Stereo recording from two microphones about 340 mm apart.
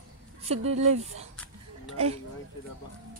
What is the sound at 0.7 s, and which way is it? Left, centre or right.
Speech, centre.